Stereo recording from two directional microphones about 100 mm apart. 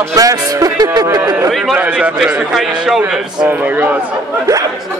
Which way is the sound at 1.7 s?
10° right (ahead or behind).